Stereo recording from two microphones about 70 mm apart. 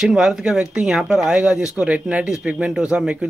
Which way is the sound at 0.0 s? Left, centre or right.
Centre.